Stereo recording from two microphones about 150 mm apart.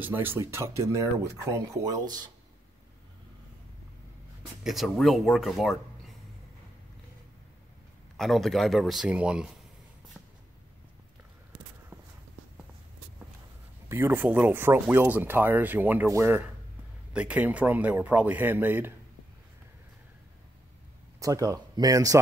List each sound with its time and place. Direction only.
0.0 s speech: 15° right (ahead or behind)
4.6 s speech: centre (ahead or behind)
8.2 s speech: centre (ahead or behind)
13.8 s speech: 15° right (ahead or behind)
21.2 s speech: 20° right (ahead or behind)